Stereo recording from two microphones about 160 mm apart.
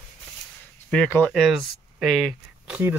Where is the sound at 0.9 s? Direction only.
10° left (ahead or behind).